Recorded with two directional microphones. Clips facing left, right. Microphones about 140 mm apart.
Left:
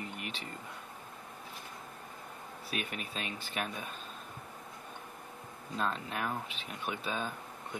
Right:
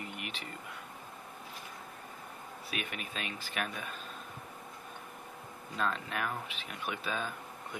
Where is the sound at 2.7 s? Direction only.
35° left (ahead or behind).